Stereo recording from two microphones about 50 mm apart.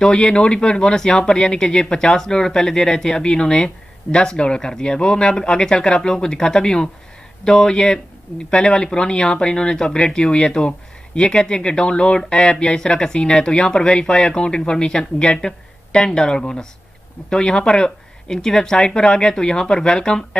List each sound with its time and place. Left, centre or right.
0.0 s speech: centre